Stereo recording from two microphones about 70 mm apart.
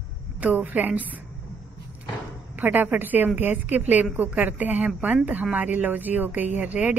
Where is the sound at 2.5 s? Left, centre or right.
Right.